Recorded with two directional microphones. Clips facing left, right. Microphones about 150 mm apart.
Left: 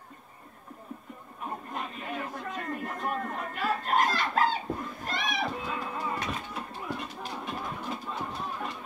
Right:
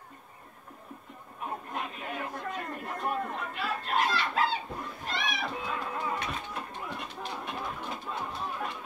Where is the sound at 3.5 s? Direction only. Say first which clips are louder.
Left 4 dB; 45° left (ahead or behind).